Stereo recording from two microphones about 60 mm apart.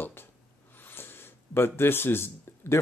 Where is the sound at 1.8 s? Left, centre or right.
Left.